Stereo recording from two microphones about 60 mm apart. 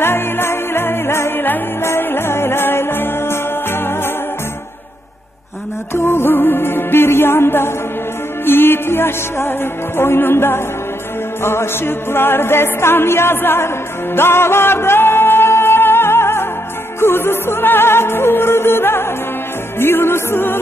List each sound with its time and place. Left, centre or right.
0.0 s music: left
5.9 s music: left